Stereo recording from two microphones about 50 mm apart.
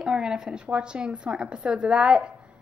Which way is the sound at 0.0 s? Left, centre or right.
Centre.